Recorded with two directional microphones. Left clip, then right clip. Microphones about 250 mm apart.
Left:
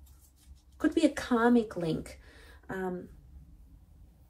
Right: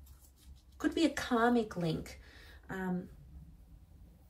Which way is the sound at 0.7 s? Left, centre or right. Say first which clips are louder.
Left 5 dB; centre.